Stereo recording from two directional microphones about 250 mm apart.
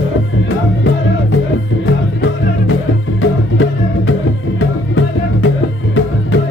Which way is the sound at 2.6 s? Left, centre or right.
Left.